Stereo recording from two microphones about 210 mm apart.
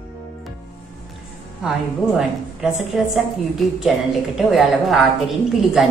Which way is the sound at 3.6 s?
Centre (ahead or behind).